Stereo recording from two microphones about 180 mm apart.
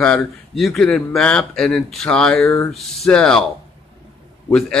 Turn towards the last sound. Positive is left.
turn(degrees=5)  # may be behind; listen again after turning